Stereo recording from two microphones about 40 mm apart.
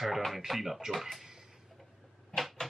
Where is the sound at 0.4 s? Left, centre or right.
Centre.